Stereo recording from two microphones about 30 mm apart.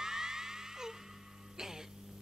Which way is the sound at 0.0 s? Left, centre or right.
Centre.